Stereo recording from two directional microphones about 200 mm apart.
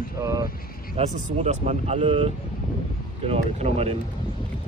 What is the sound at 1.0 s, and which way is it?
Speech, 35° right (ahead or behind).